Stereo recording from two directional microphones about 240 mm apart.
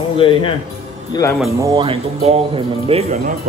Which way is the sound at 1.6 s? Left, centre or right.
Right.